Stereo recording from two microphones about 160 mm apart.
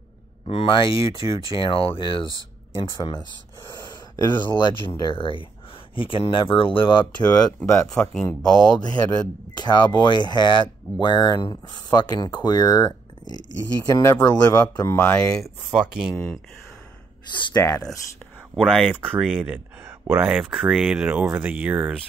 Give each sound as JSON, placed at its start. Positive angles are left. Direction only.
{"t": 0.5, "sound": "speech", "side_deg": 35}
{"t": 7.2, "sound": "speech", "side_deg": 15}
{"t": 7.9, "sound": "speech", "side_deg": 5}
{"t": 8.7, "sound": "speech", "side_deg": 25}
{"t": 15.4, "sound": "speech", "side_deg": -5}
{"t": 17.4, "sound": "speech", "side_deg": 25}
{"t": 18.6, "sound": "speech", "side_deg": -5}